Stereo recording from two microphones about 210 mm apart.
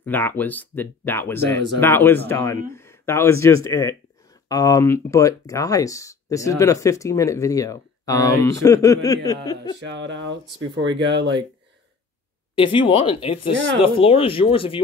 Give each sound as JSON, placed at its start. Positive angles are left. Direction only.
{"t": 0.0, "sound": "speech", "side_deg": 10}
{"t": 9.9, "sound": "speech", "side_deg": -60}
{"t": 12.5, "sound": "speech", "side_deg": 25}